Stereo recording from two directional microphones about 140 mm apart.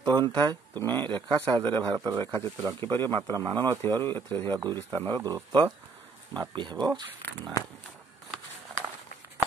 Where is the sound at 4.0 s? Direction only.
15° left (ahead or behind).